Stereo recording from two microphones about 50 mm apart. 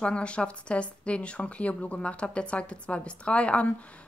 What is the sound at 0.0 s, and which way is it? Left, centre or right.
Speech, left.